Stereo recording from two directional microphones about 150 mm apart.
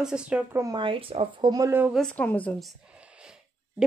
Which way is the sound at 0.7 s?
35° right (ahead or behind).